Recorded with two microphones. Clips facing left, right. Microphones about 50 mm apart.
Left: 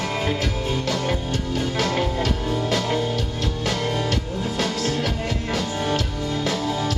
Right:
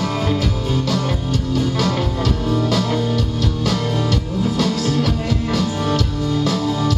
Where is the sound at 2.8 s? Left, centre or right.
Centre.